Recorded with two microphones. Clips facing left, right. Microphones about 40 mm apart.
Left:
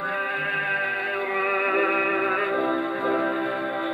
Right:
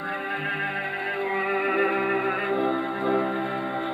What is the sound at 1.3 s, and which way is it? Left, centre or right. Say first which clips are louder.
Music: left 2 dB; centre.